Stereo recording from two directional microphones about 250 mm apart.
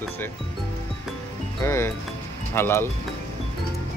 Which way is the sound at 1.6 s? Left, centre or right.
Centre.